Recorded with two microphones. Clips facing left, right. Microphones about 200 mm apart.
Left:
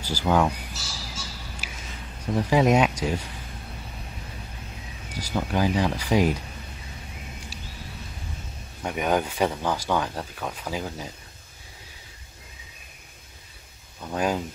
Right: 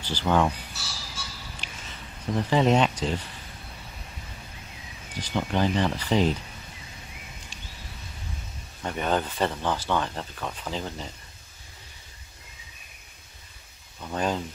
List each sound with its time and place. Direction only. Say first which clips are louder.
0.0 s speech: left 1 dB; 10° left (ahead or behind)
0.7 s a sound: left 2 dB; 60° right (ahead or behind)
1.6 s a sound: left 3 dB; 5° left (ahead or behind)
2.3 s speech: left 2 dB; 10° left (ahead or behind)
5.1 s speech: left 1 dB; 10° left (ahead or behind)
8.8 s speech: left 2 dB; 10° left (ahead or behind)
14.1 s speech: left 2 dB; 10° left (ahead or behind)